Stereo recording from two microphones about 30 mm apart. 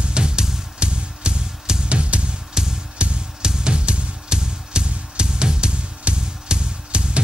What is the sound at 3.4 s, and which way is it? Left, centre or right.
Music, right.